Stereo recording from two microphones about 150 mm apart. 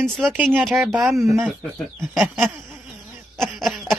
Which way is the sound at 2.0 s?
10° right (ahead or behind).